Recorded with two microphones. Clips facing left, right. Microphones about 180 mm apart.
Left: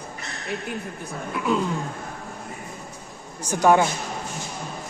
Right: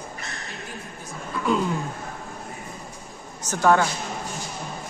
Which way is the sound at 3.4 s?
15° left (ahead or behind).